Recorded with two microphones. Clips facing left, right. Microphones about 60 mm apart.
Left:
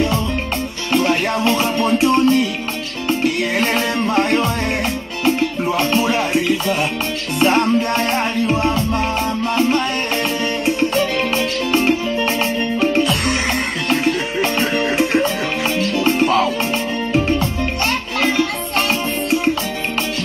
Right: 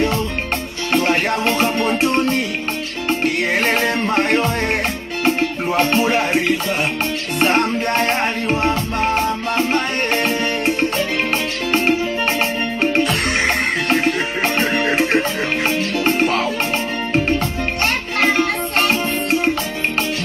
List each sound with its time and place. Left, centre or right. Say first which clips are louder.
0.9 s music: even; right
5.8 s music: right 2 dB; right
11.7 s music: even; right